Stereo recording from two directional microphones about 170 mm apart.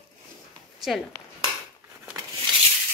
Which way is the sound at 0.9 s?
Centre (ahead or behind).